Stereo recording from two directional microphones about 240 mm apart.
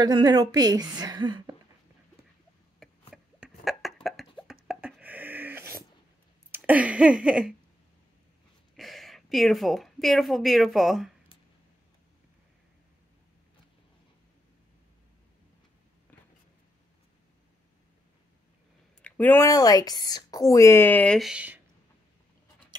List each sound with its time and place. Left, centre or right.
0.0 s a woman's voice: centre
2.8 s a sound: centre
6.5 s speech: centre
8.7 s a woman's voice: centre
19.0 s speech: centre